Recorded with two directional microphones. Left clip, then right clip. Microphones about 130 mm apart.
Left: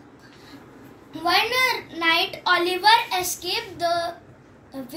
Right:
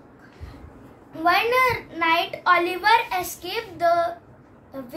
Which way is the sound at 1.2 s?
5° right (ahead or behind).